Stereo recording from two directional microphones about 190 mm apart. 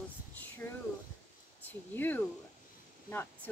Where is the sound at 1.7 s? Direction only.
10° left (ahead or behind).